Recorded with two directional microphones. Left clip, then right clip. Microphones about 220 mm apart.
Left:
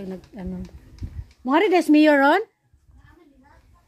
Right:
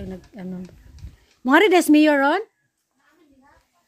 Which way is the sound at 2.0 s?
Centre (ahead or behind).